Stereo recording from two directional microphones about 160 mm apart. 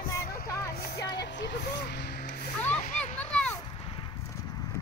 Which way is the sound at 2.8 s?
45° left (ahead or behind).